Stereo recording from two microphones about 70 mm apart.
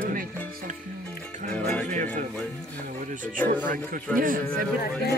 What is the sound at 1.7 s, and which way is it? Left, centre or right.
Speech, left.